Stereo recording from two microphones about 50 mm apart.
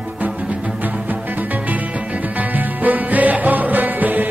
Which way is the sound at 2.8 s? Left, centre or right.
Right.